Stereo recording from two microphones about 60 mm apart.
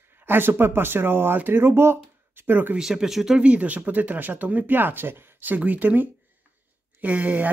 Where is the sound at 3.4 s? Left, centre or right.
Right.